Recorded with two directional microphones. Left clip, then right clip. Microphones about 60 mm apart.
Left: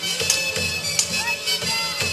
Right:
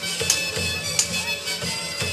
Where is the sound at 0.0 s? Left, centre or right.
Centre.